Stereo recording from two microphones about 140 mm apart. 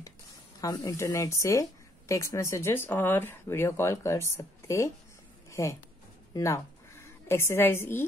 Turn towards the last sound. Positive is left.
turn(degrees=15)  # may be behind; listen again after turning